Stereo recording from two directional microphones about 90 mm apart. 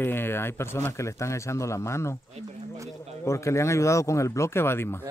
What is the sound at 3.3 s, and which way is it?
Speech, 35° left (ahead or behind).